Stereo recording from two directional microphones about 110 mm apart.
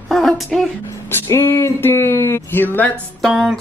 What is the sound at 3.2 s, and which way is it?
Speech, 5° right (ahead or behind).